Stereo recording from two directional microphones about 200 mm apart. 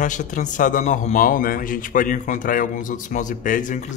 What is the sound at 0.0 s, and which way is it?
A man's voice, 40° left (ahead or behind).